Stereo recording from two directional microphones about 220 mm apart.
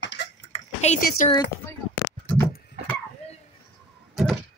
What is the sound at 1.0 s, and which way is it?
Speech, 35° left (ahead or behind).